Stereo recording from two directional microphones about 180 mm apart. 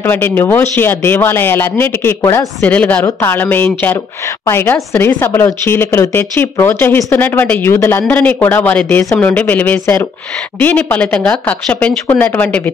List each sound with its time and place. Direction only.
0.0 s speech: 10° left (ahead or behind)